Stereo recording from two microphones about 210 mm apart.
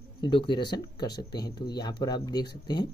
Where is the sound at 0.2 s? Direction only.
25° left (ahead or behind).